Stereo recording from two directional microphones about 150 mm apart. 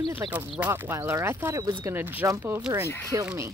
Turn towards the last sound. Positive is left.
turn(degrees=-20)  # may be behind; listen again after turning